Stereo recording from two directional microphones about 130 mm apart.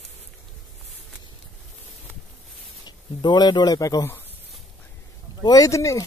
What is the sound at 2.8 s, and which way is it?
Speech, 35° left (ahead or behind).